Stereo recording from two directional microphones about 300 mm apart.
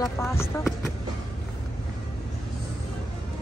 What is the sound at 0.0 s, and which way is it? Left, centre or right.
Speech, centre.